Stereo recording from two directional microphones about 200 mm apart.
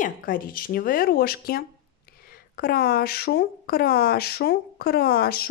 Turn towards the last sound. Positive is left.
turn(degrees=50)  # may be behind; listen again after turning